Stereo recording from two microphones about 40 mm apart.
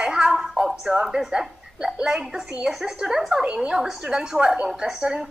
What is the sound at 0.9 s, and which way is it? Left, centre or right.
A woman's voice, right.